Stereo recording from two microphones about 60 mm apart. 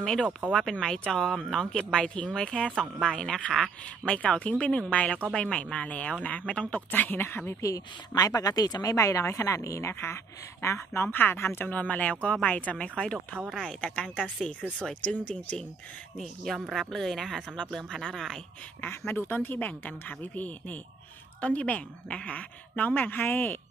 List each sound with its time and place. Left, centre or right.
0.0 s speech: centre
6.9 s speech: left
7.6 s a woman's voice: left
9.8 s speech: left
11.7 s speech: left
16.5 s speech: centre
18.9 s speech: left